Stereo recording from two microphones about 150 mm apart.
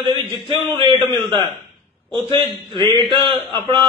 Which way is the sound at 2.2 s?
35° right (ahead or behind).